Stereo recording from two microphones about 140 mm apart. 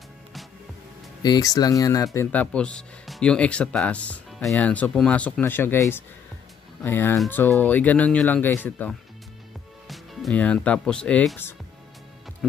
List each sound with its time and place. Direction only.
1.2 s speech: 30° left (ahead or behind)
2.1 s speech: 10° left (ahead or behind)